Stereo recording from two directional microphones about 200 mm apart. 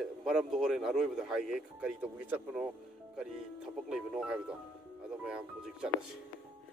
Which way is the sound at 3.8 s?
5° right (ahead or behind).